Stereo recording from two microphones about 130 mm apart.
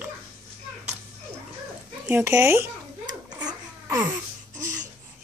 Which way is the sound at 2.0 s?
15° right (ahead or behind).